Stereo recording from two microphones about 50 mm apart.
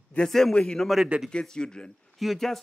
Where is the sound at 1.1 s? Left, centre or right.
Right.